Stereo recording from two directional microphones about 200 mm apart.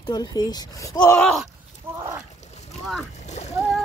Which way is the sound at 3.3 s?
35° left (ahead or behind).